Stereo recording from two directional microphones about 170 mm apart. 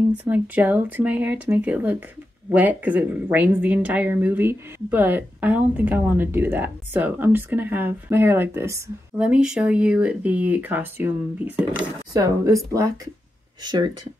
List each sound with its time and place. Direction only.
0.2 s speech: 10° right (ahead or behind)
12.1 s speech: 20° right (ahead or behind)